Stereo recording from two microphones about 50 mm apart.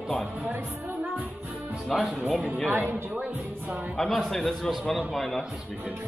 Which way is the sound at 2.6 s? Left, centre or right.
Right.